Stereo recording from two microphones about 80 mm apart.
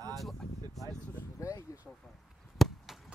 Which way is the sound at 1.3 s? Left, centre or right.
Left.